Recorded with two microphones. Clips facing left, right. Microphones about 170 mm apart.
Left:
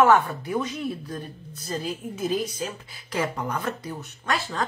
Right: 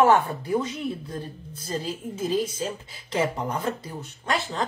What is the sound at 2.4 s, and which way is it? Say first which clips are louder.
Speech: right 2 dB; 25° right (ahead or behind).